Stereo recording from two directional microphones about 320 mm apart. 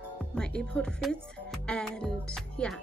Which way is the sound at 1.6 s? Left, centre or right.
Centre.